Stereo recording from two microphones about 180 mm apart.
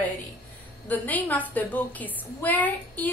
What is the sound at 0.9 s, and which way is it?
A woman's voice, 10° left (ahead or behind).